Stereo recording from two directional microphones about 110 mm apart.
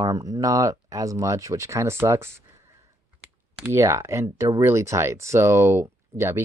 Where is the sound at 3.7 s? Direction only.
25° right (ahead or behind).